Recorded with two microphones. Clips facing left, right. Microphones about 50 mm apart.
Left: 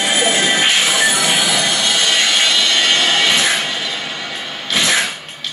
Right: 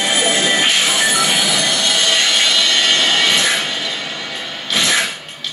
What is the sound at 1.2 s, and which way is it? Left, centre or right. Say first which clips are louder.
Train wheels squealing: left 1 dB; left.